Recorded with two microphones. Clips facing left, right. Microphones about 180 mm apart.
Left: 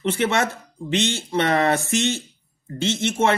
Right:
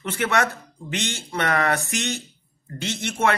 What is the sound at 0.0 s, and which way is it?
Speech, 25° left (ahead or behind).